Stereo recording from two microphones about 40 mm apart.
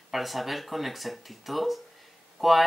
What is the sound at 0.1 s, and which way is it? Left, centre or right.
Speech, centre.